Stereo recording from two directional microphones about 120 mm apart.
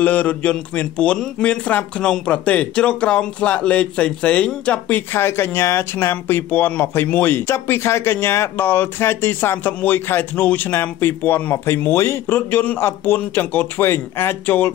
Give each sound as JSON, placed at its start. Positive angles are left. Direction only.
{"t": 0.0, "sound": "a man's voice", "side_deg": 15}